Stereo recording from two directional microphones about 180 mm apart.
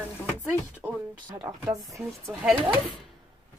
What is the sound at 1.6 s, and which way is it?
Speech, 20° right (ahead or behind).